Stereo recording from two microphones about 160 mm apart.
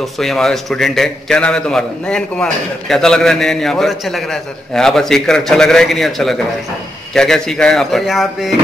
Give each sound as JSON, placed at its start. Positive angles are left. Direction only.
{"t": 0.0, "sound": "a man's voice", "side_deg": 0}